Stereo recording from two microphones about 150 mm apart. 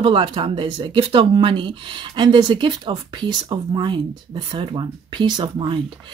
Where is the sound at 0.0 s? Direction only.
35° right (ahead or behind).